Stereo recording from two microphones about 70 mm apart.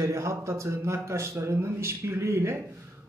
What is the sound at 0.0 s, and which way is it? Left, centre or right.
Speech, right.